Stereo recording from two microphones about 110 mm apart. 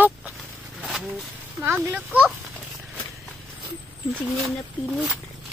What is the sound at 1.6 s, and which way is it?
Speech, 15° right (ahead or behind).